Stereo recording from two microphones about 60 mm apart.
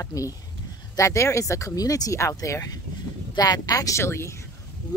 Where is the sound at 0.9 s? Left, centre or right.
Left.